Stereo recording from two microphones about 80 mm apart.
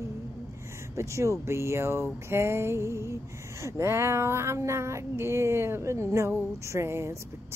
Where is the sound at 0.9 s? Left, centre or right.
Right.